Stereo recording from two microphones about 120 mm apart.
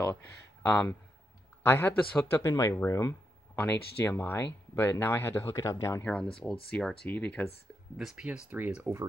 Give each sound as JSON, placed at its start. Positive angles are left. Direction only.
{"t": 0.0, "sound": "a sound", "side_deg": 15}
{"t": 1.6, "sound": "speech", "side_deg": 20}
{"t": 6.0, "sound": "speech", "side_deg": 10}
{"t": 8.0, "sound": "speech", "side_deg": -5}